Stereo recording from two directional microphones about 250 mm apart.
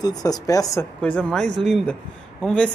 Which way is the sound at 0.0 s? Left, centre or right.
Centre.